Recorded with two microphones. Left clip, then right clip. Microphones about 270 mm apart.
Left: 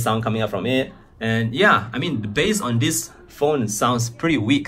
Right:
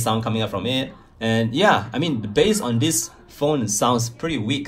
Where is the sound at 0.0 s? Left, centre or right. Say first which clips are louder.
Left 1 dB; centre.